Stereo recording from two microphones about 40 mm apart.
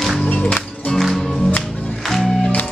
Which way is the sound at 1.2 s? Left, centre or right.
Centre.